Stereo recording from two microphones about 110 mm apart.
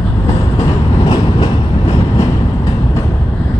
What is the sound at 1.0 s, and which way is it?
Train, 45° left (ahead or behind).